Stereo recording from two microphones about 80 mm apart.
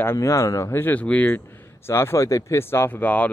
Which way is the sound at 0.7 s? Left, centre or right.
Left.